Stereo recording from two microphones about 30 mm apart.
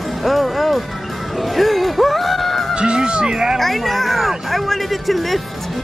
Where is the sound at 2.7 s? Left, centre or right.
Right.